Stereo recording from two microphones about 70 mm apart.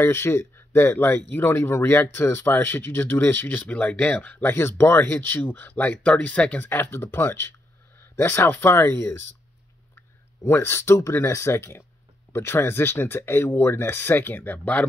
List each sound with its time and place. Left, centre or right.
0.0 s speech: left; by 6.6 s centre
6.6 s speech: left